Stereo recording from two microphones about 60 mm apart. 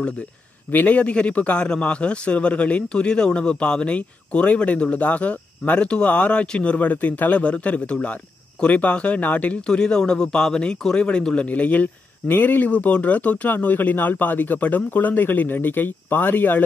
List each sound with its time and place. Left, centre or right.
0.7 s a man's voice: left